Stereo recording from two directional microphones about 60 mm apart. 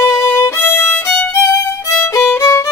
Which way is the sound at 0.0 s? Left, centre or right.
Left.